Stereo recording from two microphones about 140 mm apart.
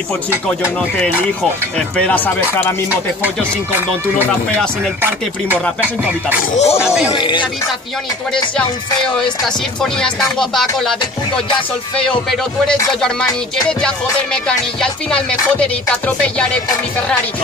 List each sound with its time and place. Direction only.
2.0 s music: 10° left (ahead or behind)
5.0 s speech: 15° right (ahead or behind)
6.5 s speech: 50° left (ahead or behind)
7.1 s speech: 35° left (ahead or behind)
9.8 s music: 5° left (ahead or behind)
12.0 s music: 5° left (ahead or behind)